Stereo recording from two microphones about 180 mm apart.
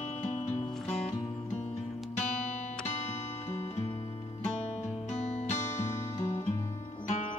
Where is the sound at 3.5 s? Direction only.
35° left (ahead or behind).